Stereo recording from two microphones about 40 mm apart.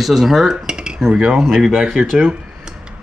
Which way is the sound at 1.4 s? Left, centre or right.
Centre.